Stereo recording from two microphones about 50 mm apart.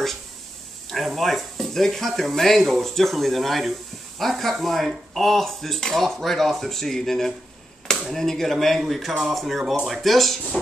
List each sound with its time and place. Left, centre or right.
0.8 s speech: centre